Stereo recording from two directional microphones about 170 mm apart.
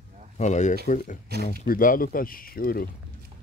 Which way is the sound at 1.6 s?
55° left (ahead or behind).